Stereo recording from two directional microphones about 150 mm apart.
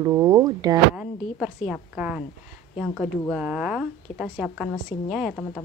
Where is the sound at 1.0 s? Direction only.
5° right (ahead or behind).